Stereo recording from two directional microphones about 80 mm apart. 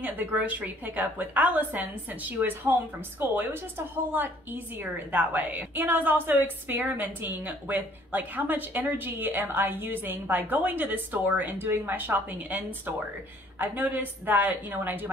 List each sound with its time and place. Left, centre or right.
0.0 s a woman's voice: right